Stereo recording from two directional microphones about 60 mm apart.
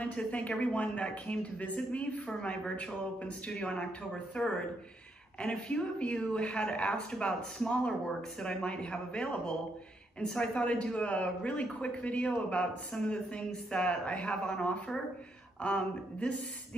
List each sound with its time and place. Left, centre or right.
0.0 s speech: left